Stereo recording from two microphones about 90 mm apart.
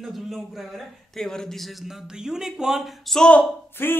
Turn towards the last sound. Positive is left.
turn(degrees=25)  # may be behind; listen again after turning